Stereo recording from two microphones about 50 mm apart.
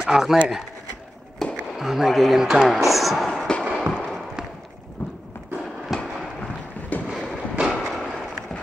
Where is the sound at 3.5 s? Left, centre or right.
Centre.